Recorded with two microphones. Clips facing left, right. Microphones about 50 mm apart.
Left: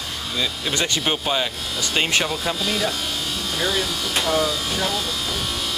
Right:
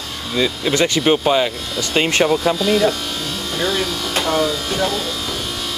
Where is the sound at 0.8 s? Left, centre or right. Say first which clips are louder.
Right 9 dB; right.